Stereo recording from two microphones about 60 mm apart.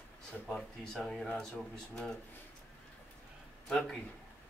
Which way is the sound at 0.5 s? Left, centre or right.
Centre.